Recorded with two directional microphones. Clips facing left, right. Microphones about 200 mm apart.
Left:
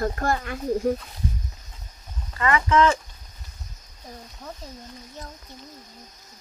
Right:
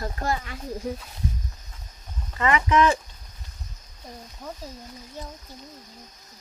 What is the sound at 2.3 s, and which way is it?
Speech, 20° right (ahead or behind).